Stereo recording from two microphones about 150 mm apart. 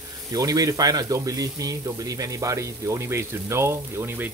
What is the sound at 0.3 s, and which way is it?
Speech, 25° right (ahead or behind).